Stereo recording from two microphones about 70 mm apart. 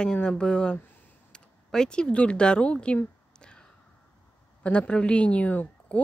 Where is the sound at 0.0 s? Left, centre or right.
Centre.